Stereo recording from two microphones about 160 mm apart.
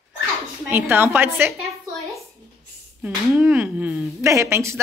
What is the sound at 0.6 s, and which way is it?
Speech, 15° right (ahead or behind).